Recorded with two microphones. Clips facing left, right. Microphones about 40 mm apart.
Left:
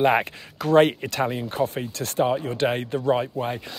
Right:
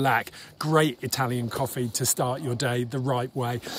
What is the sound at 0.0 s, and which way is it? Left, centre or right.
Speech, left.